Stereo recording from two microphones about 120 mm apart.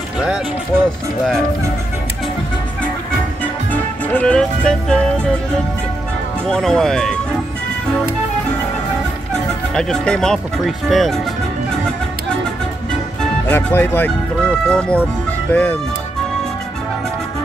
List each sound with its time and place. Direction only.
3.7 s speech: 10° left (ahead or behind)
6.4 s speech: 5° left (ahead or behind)
9.3 s speech: 5° left (ahead or behind)
13.5 s speech: 15° left (ahead or behind)